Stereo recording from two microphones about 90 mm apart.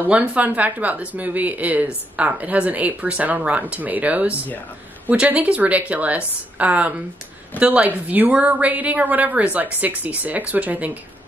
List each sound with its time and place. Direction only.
0.1 s a woman's voice: 15° right (ahead or behind)